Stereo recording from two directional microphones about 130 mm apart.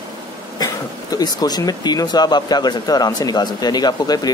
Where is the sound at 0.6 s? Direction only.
30° left (ahead or behind).